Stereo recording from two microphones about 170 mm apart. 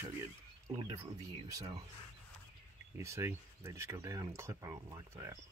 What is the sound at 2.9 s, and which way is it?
Speech, 15° right (ahead or behind).